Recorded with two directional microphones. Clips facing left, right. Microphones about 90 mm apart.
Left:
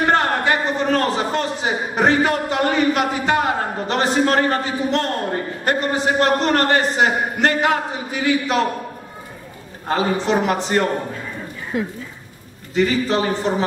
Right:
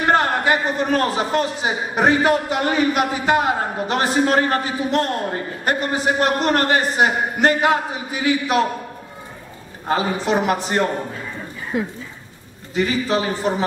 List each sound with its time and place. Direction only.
0.1 s a man's voice: 10° right (ahead or behind)
9.8 s a man's voice: 5° right (ahead or behind)
12.7 s a man's voice: 5° right (ahead or behind)